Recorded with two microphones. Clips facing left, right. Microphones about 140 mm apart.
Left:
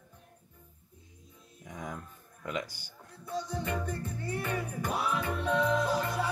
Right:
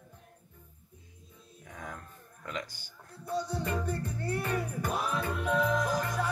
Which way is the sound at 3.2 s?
35° right (ahead or behind).